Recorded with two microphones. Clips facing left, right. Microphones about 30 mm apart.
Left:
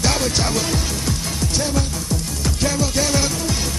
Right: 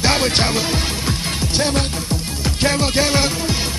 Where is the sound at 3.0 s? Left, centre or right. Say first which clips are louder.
Right 2 dB; right.